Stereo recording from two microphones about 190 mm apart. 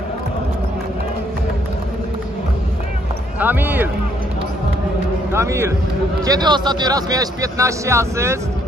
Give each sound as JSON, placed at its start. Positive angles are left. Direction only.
{"t": 3.3, "sound": "speech", "side_deg": -10}
{"t": 5.3, "sound": "speech", "side_deg": -15}